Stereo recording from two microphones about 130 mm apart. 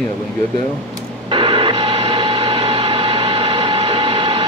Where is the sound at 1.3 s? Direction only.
40° right (ahead or behind).